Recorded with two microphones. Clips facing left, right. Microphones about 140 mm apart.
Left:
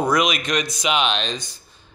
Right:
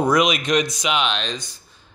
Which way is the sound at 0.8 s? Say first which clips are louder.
Left 1 dB; 20° left (ahead or behind).